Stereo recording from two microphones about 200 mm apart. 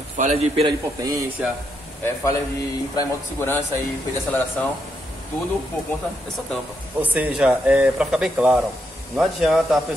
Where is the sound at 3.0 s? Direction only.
10° left (ahead or behind).